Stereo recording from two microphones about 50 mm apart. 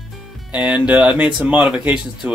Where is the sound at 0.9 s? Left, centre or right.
Centre.